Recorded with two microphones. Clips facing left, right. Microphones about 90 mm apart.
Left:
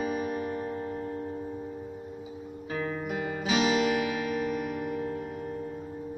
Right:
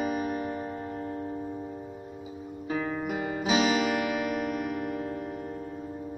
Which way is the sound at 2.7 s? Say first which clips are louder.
Right 2 dB; 10° right (ahead or behind).